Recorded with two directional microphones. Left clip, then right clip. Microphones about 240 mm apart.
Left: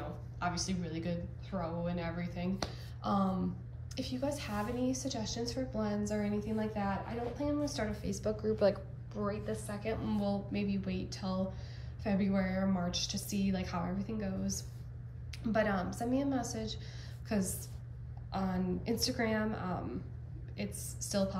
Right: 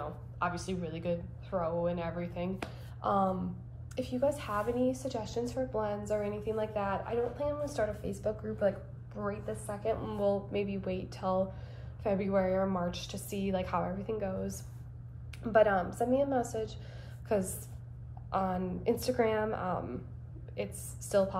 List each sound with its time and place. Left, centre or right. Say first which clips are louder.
0.4 s a woman's voice: right 2 dB; centre
10.1 s a woman's voice: right 6 dB; centre